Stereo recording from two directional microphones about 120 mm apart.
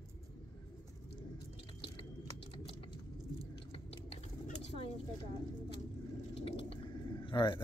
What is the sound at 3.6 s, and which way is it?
Chewing, 55° left (ahead or behind).